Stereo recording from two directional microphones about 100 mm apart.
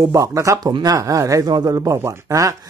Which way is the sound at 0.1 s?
35° right (ahead or behind).